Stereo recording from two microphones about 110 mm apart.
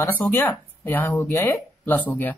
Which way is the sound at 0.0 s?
20° left (ahead or behind).